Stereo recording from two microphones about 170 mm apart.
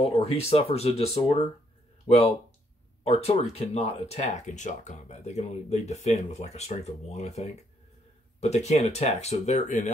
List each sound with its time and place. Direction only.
0.0 s speech: 35° left (ahead or behind)
3.0 s speech: 40° left (ahead or behind)